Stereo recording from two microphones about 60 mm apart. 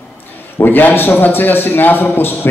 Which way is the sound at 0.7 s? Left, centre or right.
Left.